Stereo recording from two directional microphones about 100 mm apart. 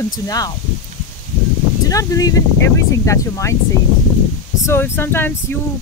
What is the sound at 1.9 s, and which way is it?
Speech, 35° left (ahead or behind).